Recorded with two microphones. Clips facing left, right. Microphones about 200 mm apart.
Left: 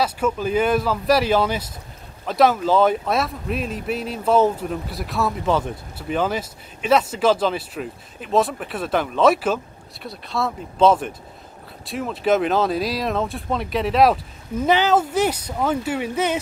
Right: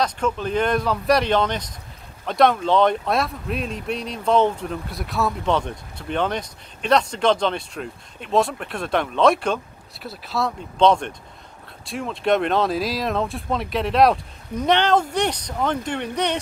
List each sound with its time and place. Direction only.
0.0 s speech: 5° left (ahead or behind)